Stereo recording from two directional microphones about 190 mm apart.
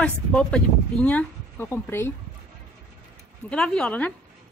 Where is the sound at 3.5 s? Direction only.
5° left (ahead or behind).